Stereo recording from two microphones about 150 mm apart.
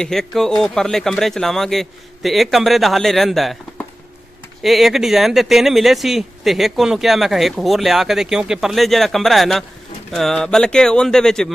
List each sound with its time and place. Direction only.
0.0 s speech: 5° left (ahead or behind)
4.6 s speech: centre (ahead or behind)